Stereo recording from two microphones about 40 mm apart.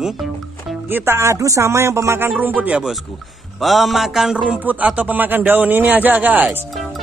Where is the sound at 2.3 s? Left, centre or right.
Right.